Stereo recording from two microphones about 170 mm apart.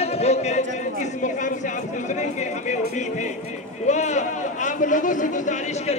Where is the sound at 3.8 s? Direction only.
45° left (ahead or behind).